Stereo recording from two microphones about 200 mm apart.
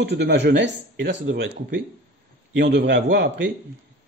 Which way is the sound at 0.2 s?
60° right (ahead or behind).